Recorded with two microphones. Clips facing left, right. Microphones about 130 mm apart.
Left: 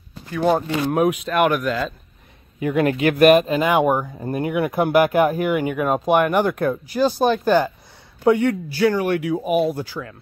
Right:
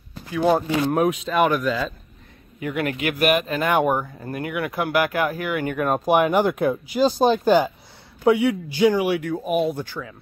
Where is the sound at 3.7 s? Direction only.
10° left (ahead or behind).